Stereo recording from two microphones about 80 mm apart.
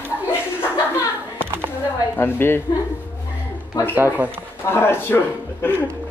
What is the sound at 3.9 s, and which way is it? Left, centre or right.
Speech, right.